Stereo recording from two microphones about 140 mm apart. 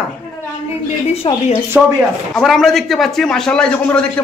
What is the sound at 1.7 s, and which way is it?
Speech, 15° right (ahead or behind).